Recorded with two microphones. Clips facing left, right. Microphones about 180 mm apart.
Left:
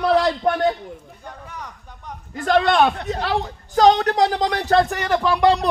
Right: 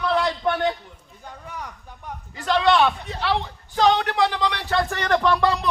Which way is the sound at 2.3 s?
50° left (ahead or behind).